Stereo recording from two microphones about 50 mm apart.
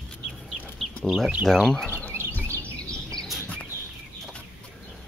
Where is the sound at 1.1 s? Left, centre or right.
Centre.